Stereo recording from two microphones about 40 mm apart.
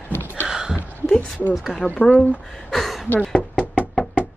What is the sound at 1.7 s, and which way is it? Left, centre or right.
Speech, left.